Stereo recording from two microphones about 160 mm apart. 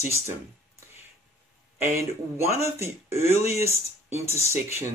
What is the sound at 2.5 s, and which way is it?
Speech, 15° right (ahead or behind).